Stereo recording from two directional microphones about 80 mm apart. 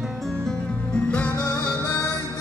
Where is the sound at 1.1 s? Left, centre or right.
Centre.